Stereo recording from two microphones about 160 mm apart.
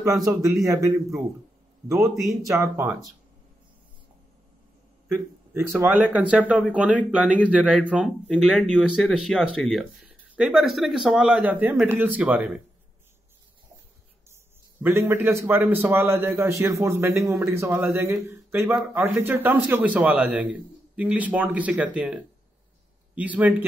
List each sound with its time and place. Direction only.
0.0 s a man's voice: 20° right (ahead or behind)
5.0 s a man's voice: 20° right (ahead or behind)
14.8 s a man's voice: 15° right (ahead or behind)